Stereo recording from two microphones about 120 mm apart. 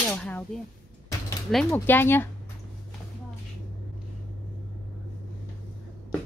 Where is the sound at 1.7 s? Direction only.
15° left (ahead or behind).